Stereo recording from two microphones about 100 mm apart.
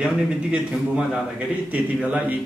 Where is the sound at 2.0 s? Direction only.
15° right (ahead or behind).